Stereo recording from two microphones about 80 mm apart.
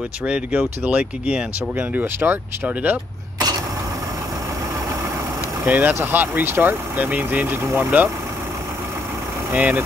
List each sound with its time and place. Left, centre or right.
0.3 s speech: centre
5.7 s speech: right
9.5 s speech: centre